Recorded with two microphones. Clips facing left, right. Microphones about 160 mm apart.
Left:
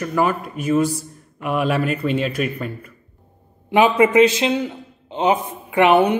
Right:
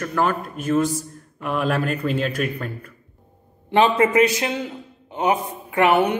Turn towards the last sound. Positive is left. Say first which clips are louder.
# left 3 dB
turn(degrees=20)  # may be behind; listen again after turning